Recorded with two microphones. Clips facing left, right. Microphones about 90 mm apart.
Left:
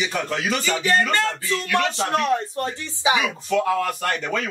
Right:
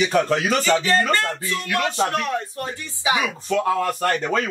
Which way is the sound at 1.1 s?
25° left (ahead or behind).